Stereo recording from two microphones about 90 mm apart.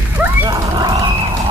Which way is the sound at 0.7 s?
50° right (ahead or behind).